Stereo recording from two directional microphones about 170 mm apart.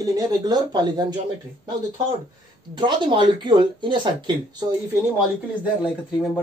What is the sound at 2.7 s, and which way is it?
A woman's voice, 30° right (ahead or behind).